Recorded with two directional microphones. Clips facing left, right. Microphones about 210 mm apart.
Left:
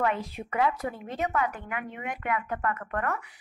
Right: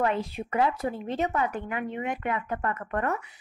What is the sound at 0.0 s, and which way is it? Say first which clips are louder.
A woman's voice: right 2 dB; 30° right (ahead or behind).